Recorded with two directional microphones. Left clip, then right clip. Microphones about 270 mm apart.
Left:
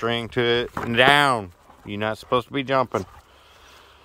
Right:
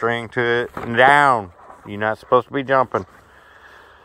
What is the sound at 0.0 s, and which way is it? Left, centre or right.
Speech, centre.